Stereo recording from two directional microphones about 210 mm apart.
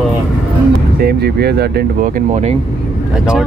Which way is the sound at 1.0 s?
50° right (ahead or behind).